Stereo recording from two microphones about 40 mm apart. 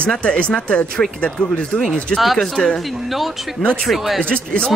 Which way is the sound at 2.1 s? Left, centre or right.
Centre.